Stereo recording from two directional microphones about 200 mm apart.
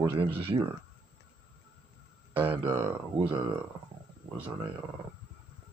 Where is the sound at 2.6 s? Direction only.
10° right (ahead or behind).